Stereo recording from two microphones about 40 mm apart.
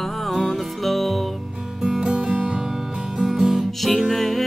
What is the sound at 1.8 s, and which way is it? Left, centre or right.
Music, centre.